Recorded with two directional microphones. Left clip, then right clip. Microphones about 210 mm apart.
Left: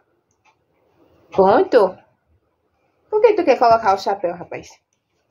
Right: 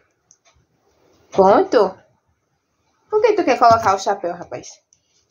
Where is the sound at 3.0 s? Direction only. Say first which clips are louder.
Left 1 dB; 15° left (ahead or behind).